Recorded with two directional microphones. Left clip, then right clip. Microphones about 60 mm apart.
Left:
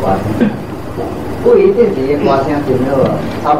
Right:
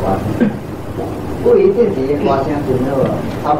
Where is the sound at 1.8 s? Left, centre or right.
Right.